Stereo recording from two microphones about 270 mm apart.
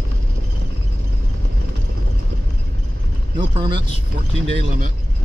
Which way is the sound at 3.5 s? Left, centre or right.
Centre.